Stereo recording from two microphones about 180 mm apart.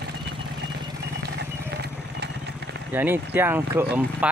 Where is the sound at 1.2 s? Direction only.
70° right (ahead or behind).